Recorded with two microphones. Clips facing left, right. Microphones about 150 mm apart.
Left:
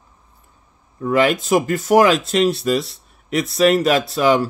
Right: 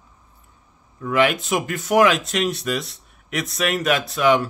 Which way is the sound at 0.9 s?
35° left (ahead or behind).